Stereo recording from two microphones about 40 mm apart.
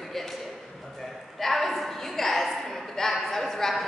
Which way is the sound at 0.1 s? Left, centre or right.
Centre.